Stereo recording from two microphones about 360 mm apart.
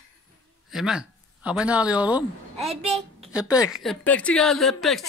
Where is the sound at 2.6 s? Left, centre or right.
Centre.